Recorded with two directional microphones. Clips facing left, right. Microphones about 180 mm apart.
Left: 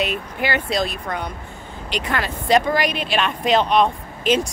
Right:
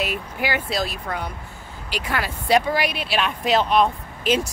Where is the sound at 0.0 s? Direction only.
10° right (ahead or behind).